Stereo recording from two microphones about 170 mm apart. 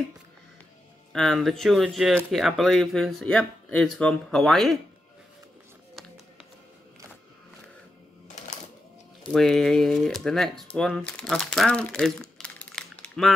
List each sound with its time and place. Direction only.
1.1 s speech: centre (ahead or behind)
9.3 s speech: centre (ahead or behind)